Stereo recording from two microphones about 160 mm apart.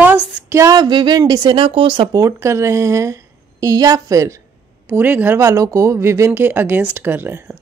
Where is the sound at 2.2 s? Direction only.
15° right (ahead or behind).